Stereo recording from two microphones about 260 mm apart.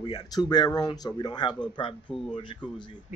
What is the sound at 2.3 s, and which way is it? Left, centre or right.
Speech, centre.